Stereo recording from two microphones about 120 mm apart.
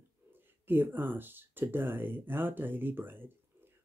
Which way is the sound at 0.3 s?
15° right (ahead or behind).